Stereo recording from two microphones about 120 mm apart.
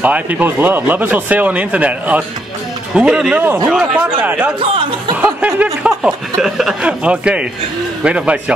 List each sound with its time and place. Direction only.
0.0 s speech: 15° right (ahead or behind)
4.6 s speech: 45° right (ahead or behind)
5.1 s speech: 10° right (ahead or behind)